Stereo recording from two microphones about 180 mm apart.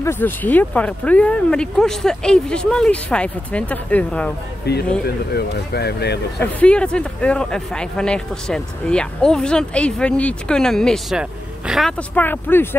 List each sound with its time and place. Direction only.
0.0 s speech: 10° left (ahead or behind)
4.7 s speech: 65° left (ahead or behind)
6.4 s speech: 5° left (ahead or behind)
12.2 s speech: 10° left (ahead or behind)